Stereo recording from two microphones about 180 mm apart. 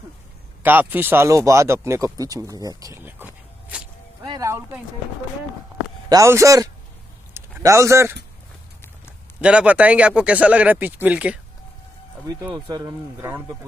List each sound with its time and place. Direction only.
0.6 s speech: 10° right (ahead or behind)
3.6 s a sound: 5° right (ahead or behind)
4.2 s music: 20° right (ahead or behind)
6.0 s a man's voice: 15° right (ahead or behind)
9.4 s speech: 5° right (ahead or behind)